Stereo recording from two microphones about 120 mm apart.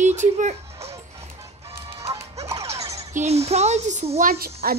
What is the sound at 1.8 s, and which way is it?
Music, 50° right (ahead or behind).